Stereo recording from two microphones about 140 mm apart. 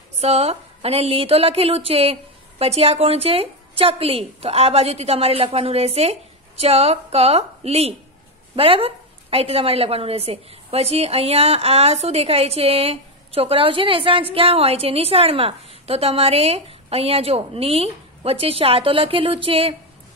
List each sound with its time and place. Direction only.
0.2 s a woman's voice: 50° right (ahead or behind)